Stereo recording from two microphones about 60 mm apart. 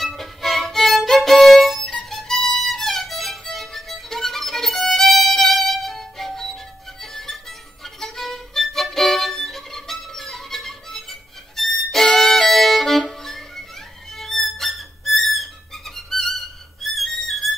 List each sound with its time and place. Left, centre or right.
0.0 s violin: centre
14.1 s music: centre